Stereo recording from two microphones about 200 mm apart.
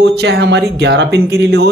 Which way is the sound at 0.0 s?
55° right (ahead or behind).